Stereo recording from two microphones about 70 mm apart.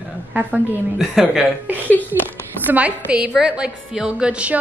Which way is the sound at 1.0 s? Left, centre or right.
Centre.